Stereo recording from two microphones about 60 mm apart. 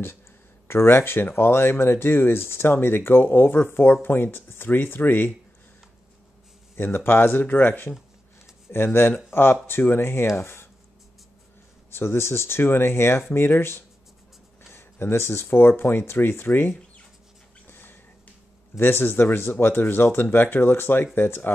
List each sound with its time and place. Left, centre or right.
0.7 s speech: left
6.8 s speech: left
11.9 s speech: left
17.6 s a sound: left
18.8 s speech: left